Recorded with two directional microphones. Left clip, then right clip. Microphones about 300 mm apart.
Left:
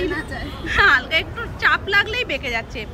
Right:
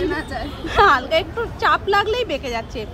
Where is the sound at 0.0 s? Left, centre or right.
Centre.